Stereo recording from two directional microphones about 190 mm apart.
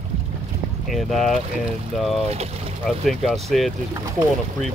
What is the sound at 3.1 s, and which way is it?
Speech, centre (ahead or behind).